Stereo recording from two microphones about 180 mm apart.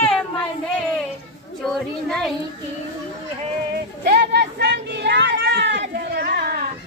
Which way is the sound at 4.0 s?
70° right (ahead or behind).